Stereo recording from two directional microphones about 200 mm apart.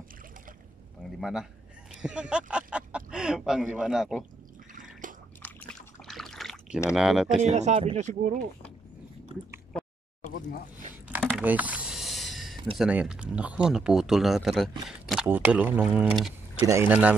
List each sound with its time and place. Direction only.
1.2 s speech: 5° right (ahead or behind)
5.0 s a sound: 40° right (ahead or behind)
5.4 s pour: centre (ahead or behind)
7.0 s speech: centre (ahead or behind)
7.4 s speech: 35° right (ahead or behind)
11.2 s a sound: 5° right (ahead or behind)
12.7 s speech: 5° right (ahead or behind)